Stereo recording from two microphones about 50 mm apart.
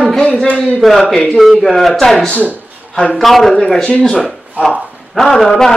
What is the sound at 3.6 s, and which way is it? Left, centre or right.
Speech, left.